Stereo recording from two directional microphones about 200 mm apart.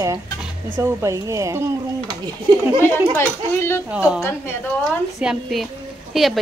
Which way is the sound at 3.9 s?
5° right (ahead or behind).